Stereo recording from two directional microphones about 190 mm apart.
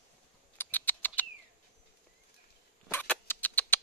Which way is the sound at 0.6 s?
10° left (ahead or behind).